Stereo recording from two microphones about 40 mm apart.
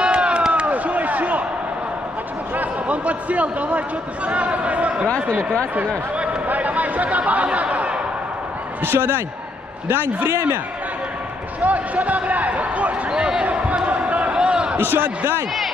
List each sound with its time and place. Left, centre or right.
0.0 s run: right
0.5 s a sound: right
2.9 s a man's voice: right
6.4 s a sound: right
8.8 s a man's voice: right
11.6 s speech: right
13.1 s basketball bounce: right
13.8 s basketball bounce: right
14.3 s a sound: right
14.8 s a man's voice: right